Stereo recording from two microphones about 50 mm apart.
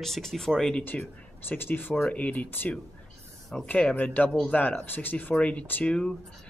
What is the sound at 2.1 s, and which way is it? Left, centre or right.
Speech, left.